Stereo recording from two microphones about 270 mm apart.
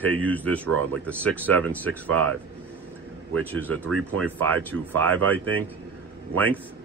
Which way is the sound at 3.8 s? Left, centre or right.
Right.